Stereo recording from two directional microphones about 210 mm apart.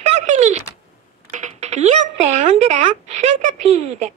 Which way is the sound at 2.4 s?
35° right (ahead or behind).